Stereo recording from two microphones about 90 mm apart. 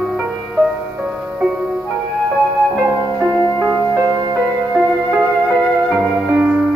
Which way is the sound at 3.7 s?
35° right (ahead or behind).